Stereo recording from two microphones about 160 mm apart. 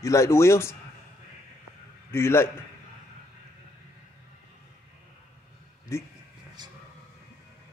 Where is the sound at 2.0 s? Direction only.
15° left (ahead or behind).